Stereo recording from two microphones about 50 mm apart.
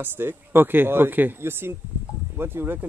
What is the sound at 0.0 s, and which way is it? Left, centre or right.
Speech, right.